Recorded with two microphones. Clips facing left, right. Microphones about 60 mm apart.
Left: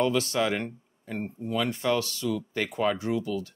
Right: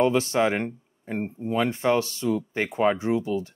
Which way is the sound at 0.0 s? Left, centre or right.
Right.